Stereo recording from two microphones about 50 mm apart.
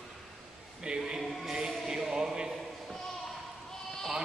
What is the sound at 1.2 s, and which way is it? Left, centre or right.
Speech, centre.